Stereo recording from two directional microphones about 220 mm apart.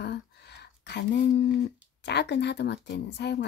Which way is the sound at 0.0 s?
50° left (ahead or behind).